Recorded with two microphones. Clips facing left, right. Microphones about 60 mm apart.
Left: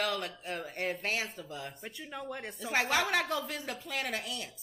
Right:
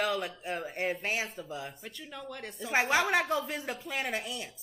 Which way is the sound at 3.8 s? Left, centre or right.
Centre.